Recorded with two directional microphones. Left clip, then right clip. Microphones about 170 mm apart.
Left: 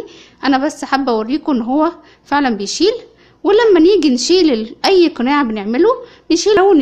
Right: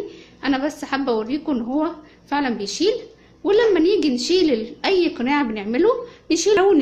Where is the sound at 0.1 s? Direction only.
30° left (ahead or behind).